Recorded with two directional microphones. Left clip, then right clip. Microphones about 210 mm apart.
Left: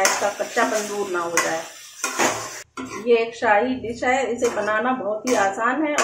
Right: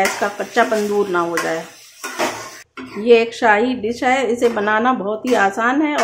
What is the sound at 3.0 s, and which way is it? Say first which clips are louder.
A woman's voice: right 6 dB; 50° right (ahead or behind).